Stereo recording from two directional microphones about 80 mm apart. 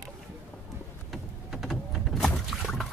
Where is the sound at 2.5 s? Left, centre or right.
Centre.